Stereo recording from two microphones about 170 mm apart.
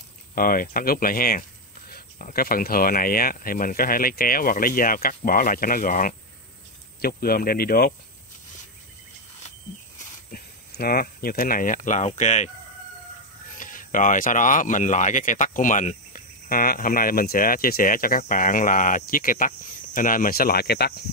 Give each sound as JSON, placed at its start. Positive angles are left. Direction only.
{"t": 0.3, "sound": "speech", "side_deg": 55}
{"t": 10.3, "sound": "speech", "side_deg": 65}
{"t": 13.6, "sound": "speech", "side_deg": 50}